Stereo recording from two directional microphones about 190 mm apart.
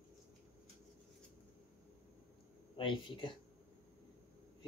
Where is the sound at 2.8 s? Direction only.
25° left (ahead or behind).